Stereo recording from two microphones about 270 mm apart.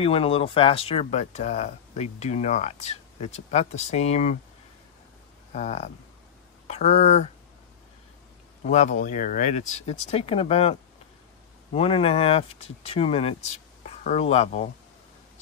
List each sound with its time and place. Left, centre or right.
0.0 s speech: left
5.5 s speech: left
8.6 s speech: left